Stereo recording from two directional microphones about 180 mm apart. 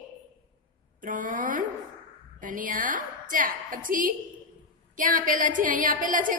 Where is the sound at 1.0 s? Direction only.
50° right (ahead or behind).